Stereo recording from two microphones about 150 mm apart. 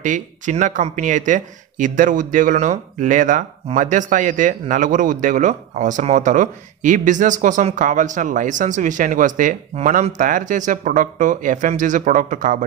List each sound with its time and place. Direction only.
0.0 s speech: 55° right (ahead or behind)